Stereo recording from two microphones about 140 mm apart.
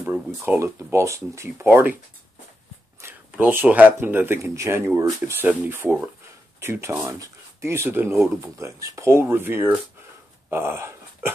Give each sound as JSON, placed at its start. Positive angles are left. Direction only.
{"t": 0.0, "sound": "speech", "side_deg": -15}
{"t": 3.0, "sound": "speech", "side_deg": -15}
{"t": 10.5, "sound": "dog", "side_deg": -15}